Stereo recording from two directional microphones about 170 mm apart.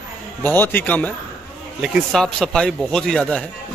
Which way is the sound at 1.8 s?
Centre (ahead or behind).